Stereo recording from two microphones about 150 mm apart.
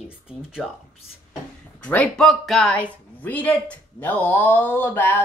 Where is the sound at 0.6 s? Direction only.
Centre (ahead or behind).